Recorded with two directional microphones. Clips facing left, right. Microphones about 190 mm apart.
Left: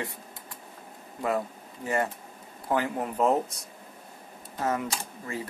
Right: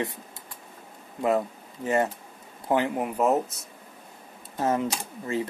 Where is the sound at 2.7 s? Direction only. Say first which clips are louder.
Right 3 dB; 20° right (ahead or behind).